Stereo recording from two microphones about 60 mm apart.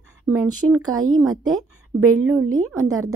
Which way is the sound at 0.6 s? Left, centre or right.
Right.